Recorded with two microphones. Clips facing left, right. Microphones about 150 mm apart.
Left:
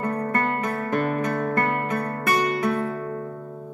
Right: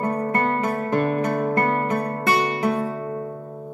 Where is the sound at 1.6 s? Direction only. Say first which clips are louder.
Right 3 dB; 30° right (ahead or behind).